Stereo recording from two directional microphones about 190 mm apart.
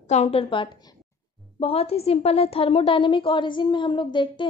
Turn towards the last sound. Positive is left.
turn(degrees=25)  # may be behind; listen again after turning